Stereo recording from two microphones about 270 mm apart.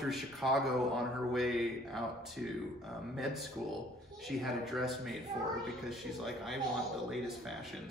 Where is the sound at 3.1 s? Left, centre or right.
Centre.